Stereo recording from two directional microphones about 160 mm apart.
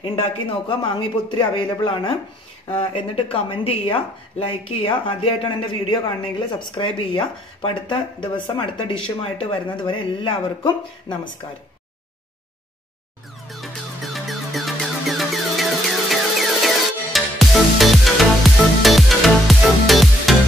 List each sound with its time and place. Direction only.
0.7 s speech: 30° left (ahead or behind)
13.5 s music: centre (ahead or behind)